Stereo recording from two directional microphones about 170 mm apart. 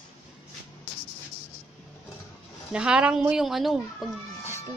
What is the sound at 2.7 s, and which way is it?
Speech, 5° right (ahead or behind).